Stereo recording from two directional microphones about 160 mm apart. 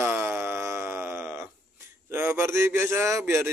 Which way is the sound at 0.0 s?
15° right (ahead or behind).